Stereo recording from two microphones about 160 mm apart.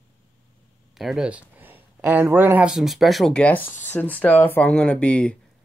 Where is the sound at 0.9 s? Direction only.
Centre (ahead or behind).